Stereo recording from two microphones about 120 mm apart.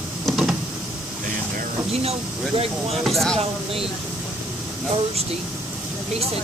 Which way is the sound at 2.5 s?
55° right (ahead or behind).